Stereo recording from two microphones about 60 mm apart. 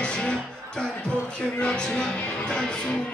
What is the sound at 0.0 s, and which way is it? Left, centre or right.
Music, centre.